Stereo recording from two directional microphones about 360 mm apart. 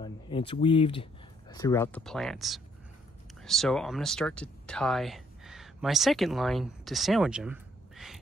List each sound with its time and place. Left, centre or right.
0.0 s speech: centre